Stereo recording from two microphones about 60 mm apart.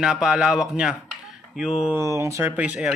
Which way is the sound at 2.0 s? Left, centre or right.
Right.